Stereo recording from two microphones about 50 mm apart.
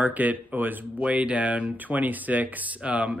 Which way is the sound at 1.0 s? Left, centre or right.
Right.